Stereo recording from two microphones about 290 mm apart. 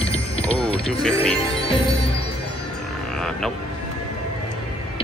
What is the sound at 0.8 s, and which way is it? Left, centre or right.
Speech, centre.